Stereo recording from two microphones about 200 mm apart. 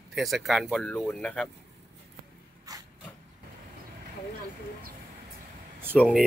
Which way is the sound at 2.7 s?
20° right (ahead or behind).